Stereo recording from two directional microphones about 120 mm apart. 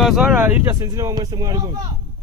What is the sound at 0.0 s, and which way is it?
Speech, 5° right (ahead or behind).